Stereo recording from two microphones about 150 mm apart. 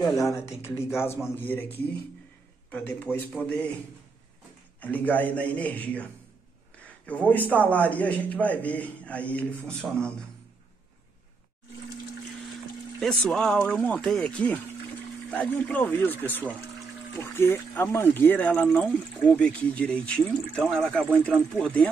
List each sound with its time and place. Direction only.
0.0 s speech: 20° left (ahead or behind)
2.7 s speech: 10° left (ahead or behind)
4.7 s speech: 10° left (ahead or behind)
13.0 s speech: 5° left (ahead or behind)